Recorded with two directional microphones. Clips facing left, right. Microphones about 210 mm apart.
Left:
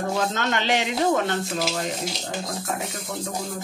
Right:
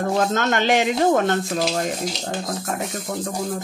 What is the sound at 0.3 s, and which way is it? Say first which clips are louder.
Speech: right 5 dB; 45° right (ahead or behind).